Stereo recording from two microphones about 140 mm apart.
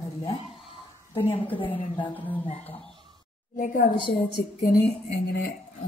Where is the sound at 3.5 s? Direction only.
75° left (ahead or behind).